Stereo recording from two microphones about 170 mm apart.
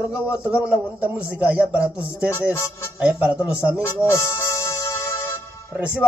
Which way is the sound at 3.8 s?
15° left (ahead or behind).